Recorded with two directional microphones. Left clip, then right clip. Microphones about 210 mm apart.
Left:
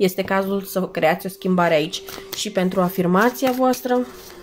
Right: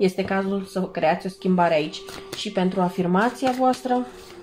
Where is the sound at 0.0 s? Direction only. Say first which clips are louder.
Left 3 dB; 35° left (ahead or behind).